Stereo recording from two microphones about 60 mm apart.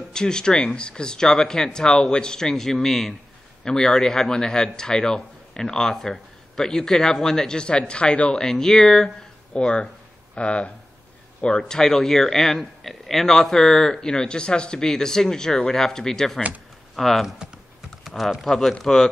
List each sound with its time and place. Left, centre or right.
0.1 s speech: centre